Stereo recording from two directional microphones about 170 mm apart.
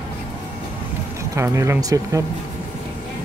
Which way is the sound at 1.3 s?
15° right (ahead or behind).